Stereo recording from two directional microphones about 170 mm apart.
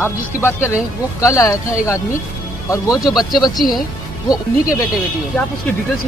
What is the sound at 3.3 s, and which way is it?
Speech, 25° left (ahead or behind).